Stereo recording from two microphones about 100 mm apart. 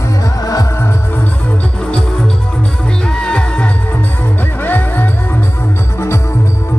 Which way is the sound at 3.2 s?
10° left (ahead or behind).